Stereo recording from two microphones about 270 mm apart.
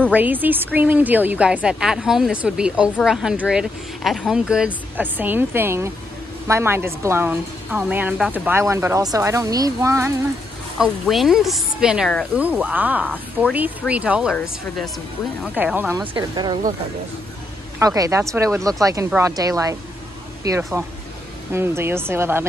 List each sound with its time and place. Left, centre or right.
0.1 s a woman's voice: centre
15.4 s a woman's voice: centre
17.7 s a woman's voice: centre